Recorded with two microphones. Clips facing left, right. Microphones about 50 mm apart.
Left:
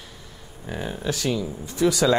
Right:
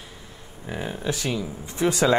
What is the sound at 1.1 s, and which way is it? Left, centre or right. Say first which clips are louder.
Speech: left 4 dB; right.